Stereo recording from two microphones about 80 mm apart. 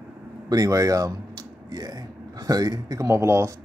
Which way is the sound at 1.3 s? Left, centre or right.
Right.